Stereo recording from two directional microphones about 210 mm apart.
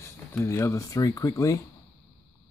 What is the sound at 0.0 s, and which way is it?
Speech, 10° left (ahead or behind).